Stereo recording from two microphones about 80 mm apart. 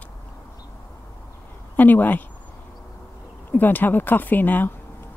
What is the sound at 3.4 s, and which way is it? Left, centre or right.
Speech, left.